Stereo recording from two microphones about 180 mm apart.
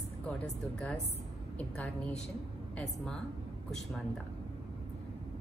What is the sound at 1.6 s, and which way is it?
Speech, 5° left (ahead or behind).